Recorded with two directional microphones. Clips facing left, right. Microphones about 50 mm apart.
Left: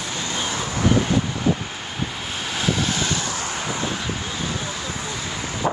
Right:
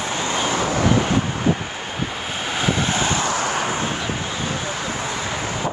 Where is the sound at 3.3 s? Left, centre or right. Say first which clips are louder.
Right 5 dB; right.